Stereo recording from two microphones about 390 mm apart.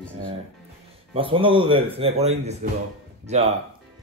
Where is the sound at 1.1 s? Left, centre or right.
Centre.